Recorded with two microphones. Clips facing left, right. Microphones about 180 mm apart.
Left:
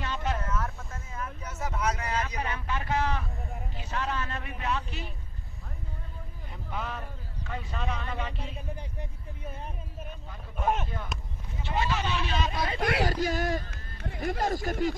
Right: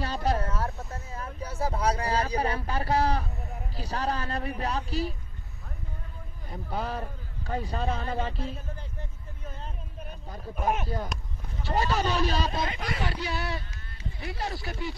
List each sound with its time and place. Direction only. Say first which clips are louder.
0.0 s a sound: right 4 dB; 35° right (ahead or behind)
3.7 s speech: right 3 dB; 35° right (ahead or behind)
6.5 s speech: right 4 dB; 35° right (ahead or behind)
11.1 s speech: right 1 dB; centre (ahead or behind)
11.6 s speech: right 3 dB; 40° right (ahead or behind)
13.0 s speech: left 4 dB; 45° left (ahead or behind); by 14.2 s 70° left (ahead or behind)
14.2 s speech: left 6 dB; 45° left (ahead or behind)